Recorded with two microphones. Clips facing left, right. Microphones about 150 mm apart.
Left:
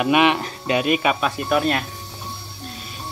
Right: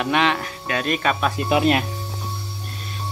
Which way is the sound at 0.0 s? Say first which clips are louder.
Left 3 dB; 15° left (ahead or behind).